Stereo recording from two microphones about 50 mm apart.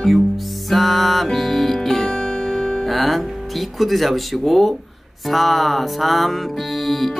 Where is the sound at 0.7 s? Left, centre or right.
Centre.